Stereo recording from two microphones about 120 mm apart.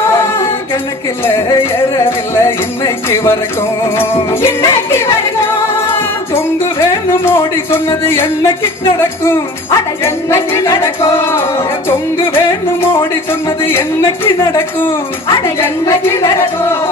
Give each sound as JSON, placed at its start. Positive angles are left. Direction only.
{"t": 1.2, "sound": "speech", "side_deg": 20}
{"t": 4.0, "sound": "music", "side_deg": 20}
{"t": 9.0, "sound": "speech", "side_deg": 20}
{"t": 15.2, "sound": "speech", "side_deg": 25}